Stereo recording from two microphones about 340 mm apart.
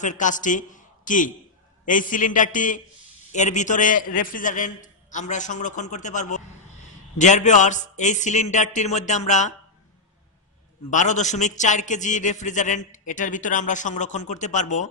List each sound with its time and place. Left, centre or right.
0.0 s a man's voice: left
10.9 s a man's voice: left